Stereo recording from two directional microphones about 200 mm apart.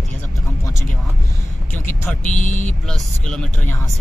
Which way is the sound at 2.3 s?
40° left (ahead or behind).